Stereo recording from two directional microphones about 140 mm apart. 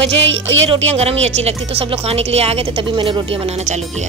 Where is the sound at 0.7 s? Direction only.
45° right (ahead or behind).